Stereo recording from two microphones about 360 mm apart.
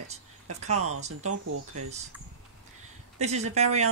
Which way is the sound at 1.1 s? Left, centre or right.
Right.